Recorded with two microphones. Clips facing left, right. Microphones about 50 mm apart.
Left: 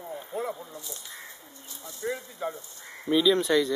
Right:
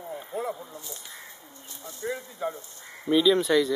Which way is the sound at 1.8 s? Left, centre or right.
Right.